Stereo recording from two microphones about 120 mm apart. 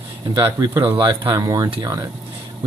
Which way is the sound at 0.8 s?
40° right (ahead or behind).